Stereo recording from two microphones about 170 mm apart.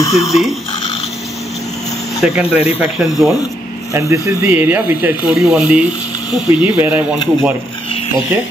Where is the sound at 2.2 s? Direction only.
5° right (ahead or behind).